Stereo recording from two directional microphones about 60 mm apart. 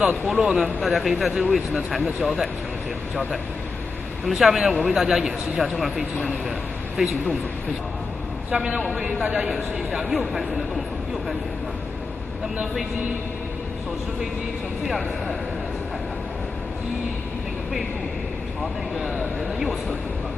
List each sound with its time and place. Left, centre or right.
0.4 s a man's voice: centre
4.2 s a man's voice: centre
8.5 s a man's voice: centre
9.5 s a man's voice: centre
18.9 s a man's voice: centre